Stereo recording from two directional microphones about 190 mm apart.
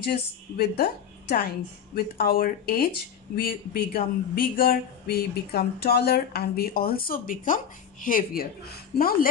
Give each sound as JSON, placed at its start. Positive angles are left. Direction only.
{"t": 0.0, "sound": "a woman's voice", "side_deg": 55}
{"t": 2.1, "sound": "speech", "side_deg": 50}